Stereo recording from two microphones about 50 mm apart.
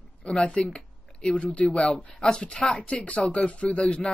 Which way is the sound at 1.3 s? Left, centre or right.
Left.